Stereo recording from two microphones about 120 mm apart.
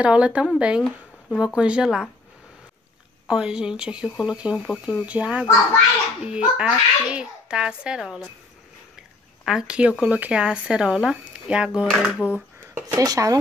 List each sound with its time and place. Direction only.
0.0 s speech: 10° right (ahead or behind)
3.3 s speech: 5° right (ahead or behind)
9.4 s speech: 5° right (ahead or behind)
12.8 s speech: 30° right (ahead or behind)